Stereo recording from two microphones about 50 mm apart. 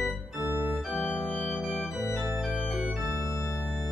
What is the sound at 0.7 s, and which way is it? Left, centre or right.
Organ, centre.